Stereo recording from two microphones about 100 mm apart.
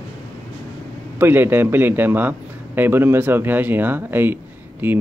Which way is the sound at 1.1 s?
20° right (ahead or behind).